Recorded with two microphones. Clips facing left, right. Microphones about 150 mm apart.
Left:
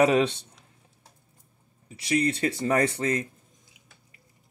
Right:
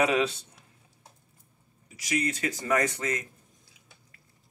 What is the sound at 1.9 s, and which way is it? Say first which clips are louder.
Speech: left 5 dB; 30° left (ahead or behind).